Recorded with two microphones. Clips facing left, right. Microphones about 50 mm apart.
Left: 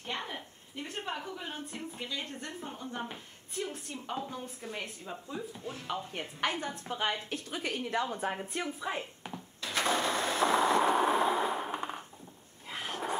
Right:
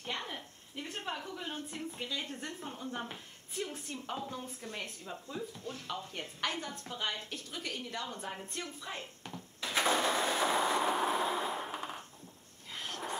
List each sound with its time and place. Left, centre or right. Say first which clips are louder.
0.0 s a woman's voice: left 2 dB; centre
6.9 s a woman's voice: left 6 dB; left
8.2 s a woman's voice: left 7 dB; left
8.5 s speech: left 7 dB; centre
9.6 s a sound: even; centre